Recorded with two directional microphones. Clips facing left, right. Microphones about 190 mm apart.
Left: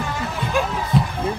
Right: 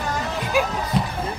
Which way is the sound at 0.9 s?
Centre (ahead or behind).